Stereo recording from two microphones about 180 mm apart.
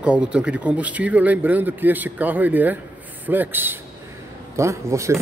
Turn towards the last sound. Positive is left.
turn(degrees=-15)  # may be behind; listen again after turning